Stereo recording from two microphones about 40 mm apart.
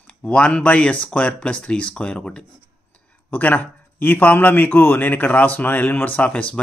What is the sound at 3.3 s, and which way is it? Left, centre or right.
Speech, left.